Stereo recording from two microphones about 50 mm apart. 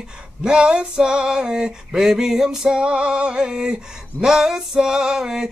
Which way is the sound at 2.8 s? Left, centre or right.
Right.